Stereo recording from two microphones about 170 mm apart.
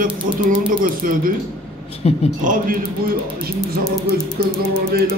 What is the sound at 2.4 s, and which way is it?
Music, 50° right (ahead or behind).